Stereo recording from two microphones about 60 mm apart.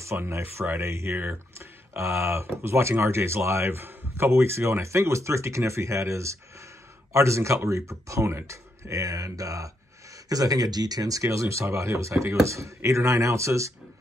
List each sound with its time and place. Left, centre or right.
0.0 s speech: right
1.1 s speech: right
10.3 s speech: right